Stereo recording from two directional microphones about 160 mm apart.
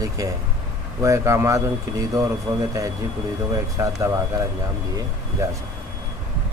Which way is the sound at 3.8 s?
20° right (ahead or behind).